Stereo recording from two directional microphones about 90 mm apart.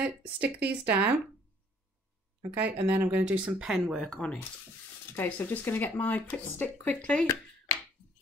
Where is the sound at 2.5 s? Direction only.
20° right (ahead or behind).